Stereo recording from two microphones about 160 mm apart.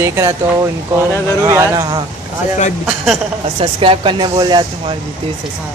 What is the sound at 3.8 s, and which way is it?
Speech, 35° right (ahead or behind).